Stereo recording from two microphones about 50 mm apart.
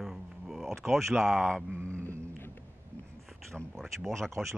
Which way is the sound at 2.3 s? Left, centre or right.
Left.